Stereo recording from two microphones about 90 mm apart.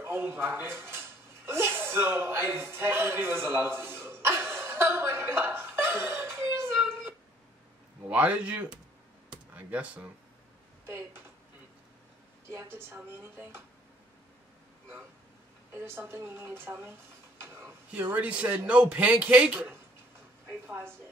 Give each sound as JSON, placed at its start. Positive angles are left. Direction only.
{"t": 0.0, "sound": "a sound", "side_deg": -25}
{"t": 8.1, "sound": "a man's voice", "side_deg": -15}
{"t": 10.9, "sound": "speech", "side_deg": -30}
{"t": 12.4, "sound": "speech", "side_deg": -30}
{"t": 15.8, "sound": "speech", "side_deg": -25}
{"t": 17.4, "sound": "a sound", "side_deg": -30}
{"t": 17.9, "sound": "a man's voice", "side_deg": -15}
{"t": 20.6, "sound": "speech", "side_deg": -25}